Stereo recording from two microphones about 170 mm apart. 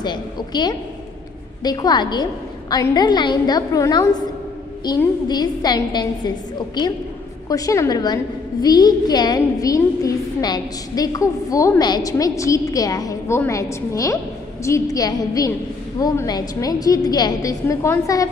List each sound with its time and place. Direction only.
0.0 s a woman's voice: 25° left (ahead or behind)